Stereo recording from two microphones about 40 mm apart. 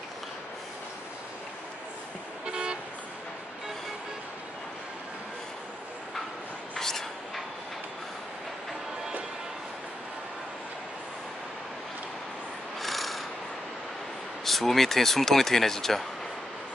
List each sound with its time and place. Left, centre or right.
2.4 s toot: right
6.7 s a sound: centre
12.8 s rub: centre
14.4 s speech: centre